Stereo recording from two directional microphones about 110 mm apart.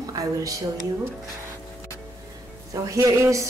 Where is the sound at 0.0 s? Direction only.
35° right (ahead or behind).